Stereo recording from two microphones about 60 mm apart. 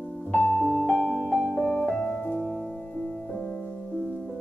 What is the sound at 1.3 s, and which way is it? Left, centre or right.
Music, right.